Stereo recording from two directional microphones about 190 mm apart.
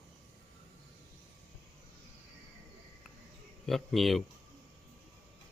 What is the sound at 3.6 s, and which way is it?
Speech, centre (ahead or behind).